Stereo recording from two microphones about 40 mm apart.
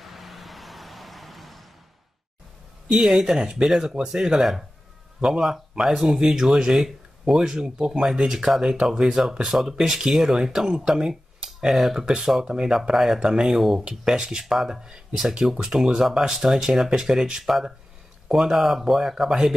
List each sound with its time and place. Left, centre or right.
0.0 s vehicle: centre
2.9 s speech: centre
12.4 s speech: right
12.9 s speech: centre
13.7 s speech: centre
14.4 s speech: centre
14.7 s speech: centre